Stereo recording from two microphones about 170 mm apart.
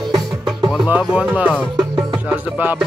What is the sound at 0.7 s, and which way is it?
Speech, centre (ahead or behind).